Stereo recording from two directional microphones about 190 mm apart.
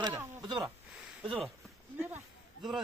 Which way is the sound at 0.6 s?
Centre (ahead or behind).